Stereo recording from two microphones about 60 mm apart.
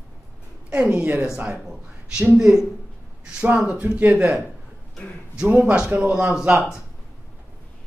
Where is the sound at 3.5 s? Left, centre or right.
Centre.